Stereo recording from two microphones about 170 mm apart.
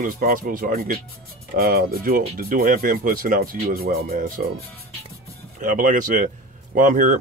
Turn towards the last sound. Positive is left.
turn(degrees=-50)  # may be behind; listen again after turning